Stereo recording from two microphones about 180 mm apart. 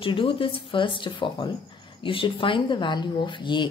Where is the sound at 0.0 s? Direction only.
30° left (ahead or behind).